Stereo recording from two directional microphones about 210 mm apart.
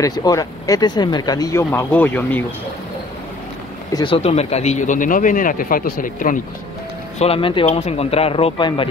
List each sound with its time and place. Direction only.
0.0 s speech: 15° left (ahead or behind)
3.9 s speech: 25° left (ahead or behind)
7.2 s a man's voice: 25° left (ahead or behind)